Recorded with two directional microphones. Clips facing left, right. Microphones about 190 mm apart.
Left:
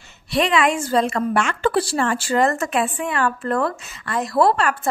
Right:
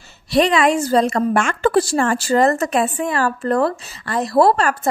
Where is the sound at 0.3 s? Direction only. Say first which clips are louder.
Right 4 dB; 40° right (ahead or behind).